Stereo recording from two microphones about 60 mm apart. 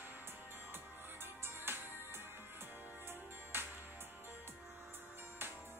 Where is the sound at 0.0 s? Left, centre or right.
Right.